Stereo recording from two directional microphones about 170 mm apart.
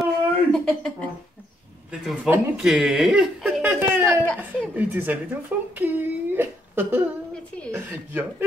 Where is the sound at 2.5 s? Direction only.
Centre (ahead or behind).